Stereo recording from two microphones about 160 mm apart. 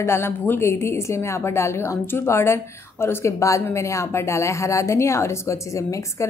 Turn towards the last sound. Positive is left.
turn(degrees=20)  # may be behind; listen again after turning